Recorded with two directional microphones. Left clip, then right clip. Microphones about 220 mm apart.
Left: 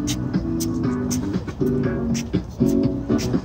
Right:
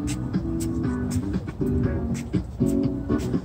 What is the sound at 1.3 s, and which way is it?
Music, 5° right (ahead or behind).